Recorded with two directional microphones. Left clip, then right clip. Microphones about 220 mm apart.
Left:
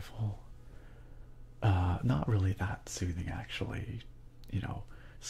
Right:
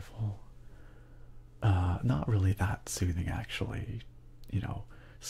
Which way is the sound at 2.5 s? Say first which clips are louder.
Right 3 dB; 20° right (ahead or behind).